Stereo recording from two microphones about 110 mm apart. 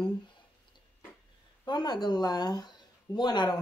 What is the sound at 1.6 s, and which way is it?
Speech, 40° left (ahead or behind).